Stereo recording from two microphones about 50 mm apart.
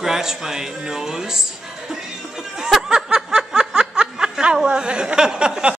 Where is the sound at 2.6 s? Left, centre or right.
Centre.